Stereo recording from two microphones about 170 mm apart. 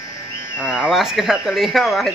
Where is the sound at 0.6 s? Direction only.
5° right (ahead or behind).